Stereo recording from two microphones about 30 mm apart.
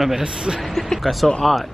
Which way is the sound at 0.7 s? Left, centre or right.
Centre.